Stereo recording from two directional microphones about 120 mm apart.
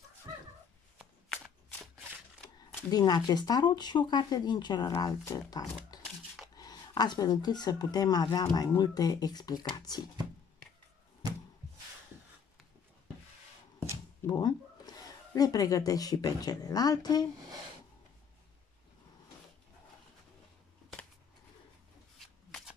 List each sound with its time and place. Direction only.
2.9 s speech: 35° left (ahead or behind)
5.9 s a sound: 35° left (ahead or behind)
6.5 s speech: 35° left (ahead or behind)
14.2 s speech: 35° left (ahead or behind)